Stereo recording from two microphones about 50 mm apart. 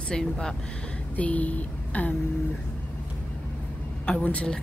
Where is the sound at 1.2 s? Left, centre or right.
Left.